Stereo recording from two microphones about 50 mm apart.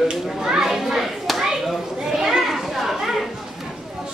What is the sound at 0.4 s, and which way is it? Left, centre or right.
Children playing, centre.